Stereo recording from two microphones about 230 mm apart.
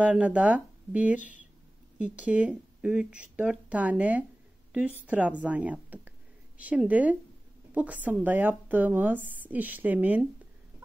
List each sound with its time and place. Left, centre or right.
0.0 s a woman's voice: centre